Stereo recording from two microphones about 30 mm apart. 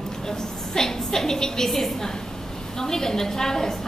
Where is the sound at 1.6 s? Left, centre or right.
Centre.